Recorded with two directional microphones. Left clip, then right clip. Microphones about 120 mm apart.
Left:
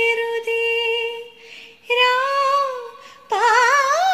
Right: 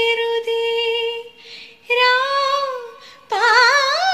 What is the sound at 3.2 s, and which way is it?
Music, 55° left (ahead or behind).